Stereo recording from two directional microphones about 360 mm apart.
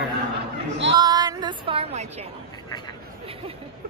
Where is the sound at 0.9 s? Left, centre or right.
Centre.